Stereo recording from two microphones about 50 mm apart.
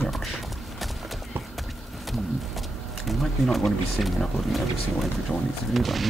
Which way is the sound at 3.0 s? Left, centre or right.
Centre.